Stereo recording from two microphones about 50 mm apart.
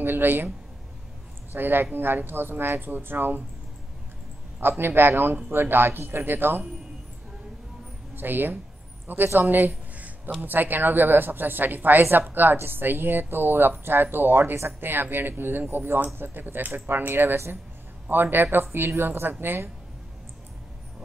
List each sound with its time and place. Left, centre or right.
0.0 s speech: right
1.5 s speech: right
4.6 s speech: right
8.2 s a woman's voice: right
9.9 s a sound: right
10.4 s a woman's voice: right